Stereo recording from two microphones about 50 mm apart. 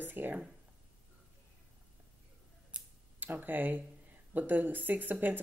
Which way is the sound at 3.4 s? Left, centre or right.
Right.